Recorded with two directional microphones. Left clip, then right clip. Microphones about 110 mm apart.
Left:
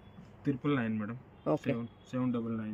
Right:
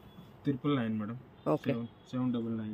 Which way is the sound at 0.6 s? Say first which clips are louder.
Even; 15° right (ahead or behind).